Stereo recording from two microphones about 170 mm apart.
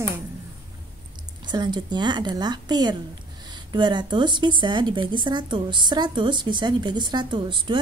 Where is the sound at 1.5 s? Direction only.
25° right (ahead or behind).